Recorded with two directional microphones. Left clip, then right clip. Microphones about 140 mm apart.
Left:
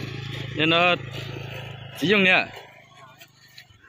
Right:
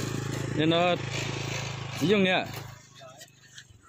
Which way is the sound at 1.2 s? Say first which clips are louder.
Right 3 dB; 50° left (ahead or behind).